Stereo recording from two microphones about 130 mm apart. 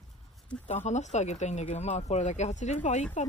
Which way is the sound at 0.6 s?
60° left (ahead or behind).